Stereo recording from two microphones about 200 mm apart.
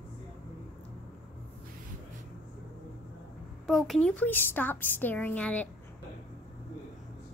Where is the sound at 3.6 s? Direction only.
Centre (ahead or behind).